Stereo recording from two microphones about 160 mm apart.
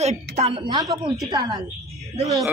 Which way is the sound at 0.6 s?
20° right (ahead or behind).